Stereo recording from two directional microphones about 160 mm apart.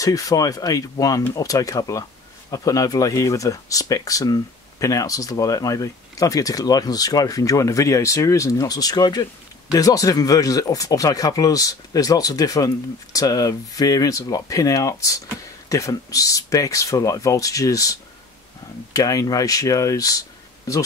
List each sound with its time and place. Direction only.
0.0 s speech: 20° left (ahead or behind)
18.9 s speech: 20° left (ahead or behind)